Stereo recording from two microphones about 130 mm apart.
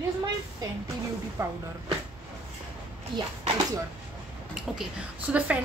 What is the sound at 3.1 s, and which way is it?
Speech, 40° right (ahead or behind).